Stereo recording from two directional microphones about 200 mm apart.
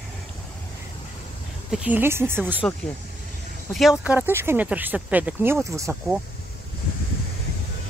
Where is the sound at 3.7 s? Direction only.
5° right (ahead or behind).